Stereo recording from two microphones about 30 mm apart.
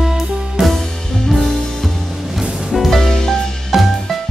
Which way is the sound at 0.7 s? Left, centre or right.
Centre.